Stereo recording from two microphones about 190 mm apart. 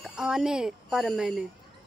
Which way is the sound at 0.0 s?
5° right (ahead or behind).